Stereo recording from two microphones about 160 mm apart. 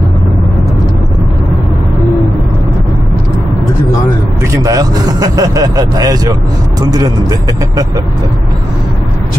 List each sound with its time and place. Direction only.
4.5 s speech: 20° right (ahead or behind)